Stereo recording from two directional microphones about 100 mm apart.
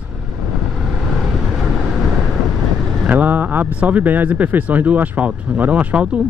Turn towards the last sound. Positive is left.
turn(degrees=-10)  # may be behind; listen again after turning